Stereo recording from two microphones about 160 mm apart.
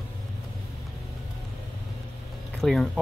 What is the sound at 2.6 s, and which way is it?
Speech, 5° left (ahead or behind).